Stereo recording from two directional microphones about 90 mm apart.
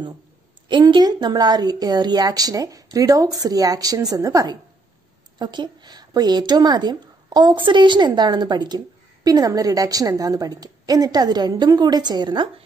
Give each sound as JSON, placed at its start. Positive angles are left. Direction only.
{"t": 0.7, "sound": "speech", "side_deg": -60}
{"t": 5.4, "sound": "speech", "side_deg": -55}